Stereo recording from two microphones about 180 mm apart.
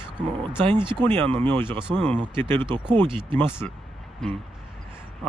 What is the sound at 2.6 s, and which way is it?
Speech, 25° right (ahead or behind).